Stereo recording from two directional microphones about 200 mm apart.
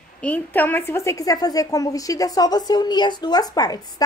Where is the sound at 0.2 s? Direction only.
10° left (ahead or behind).